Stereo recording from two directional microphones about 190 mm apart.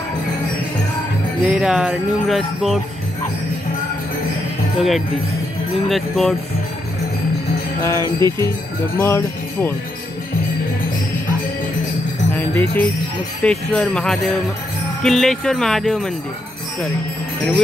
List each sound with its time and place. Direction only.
1.4 s music: 5° right (ahead or behind)
5.9 s music: centre (ahead or behind)
7.8 s music: 15° left (ahead or behind)
8.2 s speech: 20° right (ahead or behind)
9.0 s speech: 10° left (ahead or behind)
12.4 s jingle bell: 10° left (ahead or behind)
13.4 s music: 5° left (ahead or behind)